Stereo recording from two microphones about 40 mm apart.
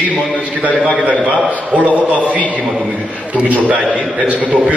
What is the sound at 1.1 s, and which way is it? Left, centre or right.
Speech, right.